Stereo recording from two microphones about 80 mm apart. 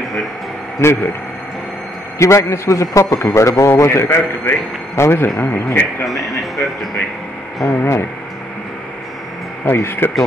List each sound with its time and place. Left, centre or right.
0.7 s a man's voice: left
2.1 s a man's voice: left
6.0 s speech: centre
7.6 s a man's voice: left
9.8 s a man's voice: left